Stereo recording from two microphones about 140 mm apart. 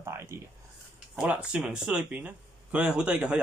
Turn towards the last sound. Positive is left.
turn(degrees=-10)  # may be behind; listen again after turning